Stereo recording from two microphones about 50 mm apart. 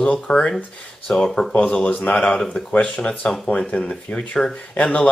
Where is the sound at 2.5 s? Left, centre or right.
Left.